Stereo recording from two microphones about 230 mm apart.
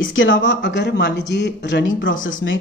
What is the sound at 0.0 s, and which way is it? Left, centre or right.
A woman's voice, left.